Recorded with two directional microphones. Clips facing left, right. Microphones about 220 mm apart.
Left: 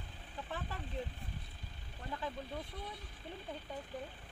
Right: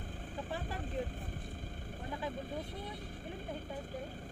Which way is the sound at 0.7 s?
50° right (ahead or behind).